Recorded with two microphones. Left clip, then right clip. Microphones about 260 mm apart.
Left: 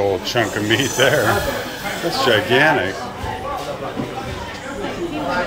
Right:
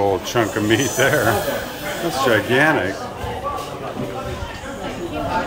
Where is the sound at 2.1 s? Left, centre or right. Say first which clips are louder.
Left 1 dB; centre.